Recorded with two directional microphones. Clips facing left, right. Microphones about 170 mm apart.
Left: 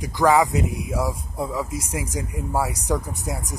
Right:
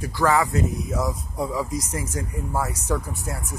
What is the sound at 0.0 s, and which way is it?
Speech, 15° left (ahead or behind).